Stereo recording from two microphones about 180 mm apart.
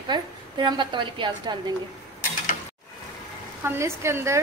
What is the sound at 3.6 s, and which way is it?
Speech, 15° right (ahead or behind).